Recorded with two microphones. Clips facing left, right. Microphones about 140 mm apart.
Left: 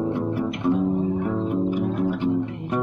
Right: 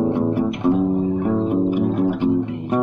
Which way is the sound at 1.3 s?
20° right (ahead or behind).